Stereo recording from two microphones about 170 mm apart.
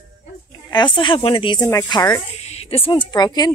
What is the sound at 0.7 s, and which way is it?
Speech, 25° left (ahead or behind).